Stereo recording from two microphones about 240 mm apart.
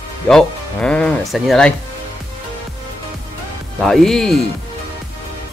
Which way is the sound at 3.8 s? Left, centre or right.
Centre.